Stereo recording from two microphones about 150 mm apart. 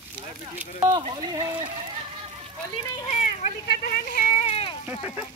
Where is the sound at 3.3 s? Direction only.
70° left (ahead or behind).